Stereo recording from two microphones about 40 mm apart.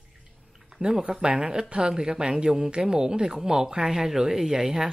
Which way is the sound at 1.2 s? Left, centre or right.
Right.